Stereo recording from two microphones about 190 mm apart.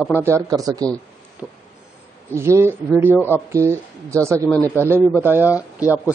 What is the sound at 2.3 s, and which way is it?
Speech, 15° right (ahead or behind).